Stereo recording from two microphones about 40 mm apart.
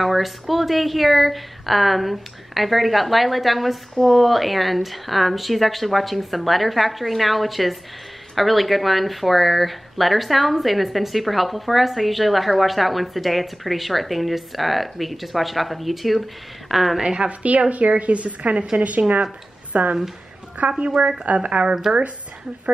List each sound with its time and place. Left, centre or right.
0.0 s speech: centre
17.0 s a woman's voice: right
17.3 s a woman's voice: right
20.8 s a woman's voice: right
21.3 s a woman's voice: right
21.9 s speech: centre